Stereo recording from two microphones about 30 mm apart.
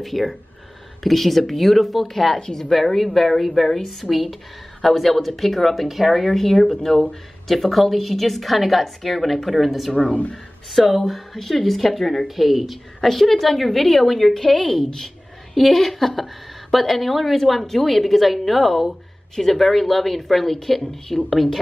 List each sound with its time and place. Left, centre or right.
0.0 s a woman's voice: centre
2.3 s a woman's voice: centre
2.7 s a woman's voice: centre
9.9 s speech: left
10.3 s a woman's voice: centre
12.3 s a woman's voice: centre